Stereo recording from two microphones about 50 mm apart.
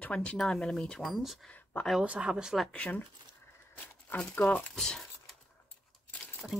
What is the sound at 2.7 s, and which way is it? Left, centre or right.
Speech, left.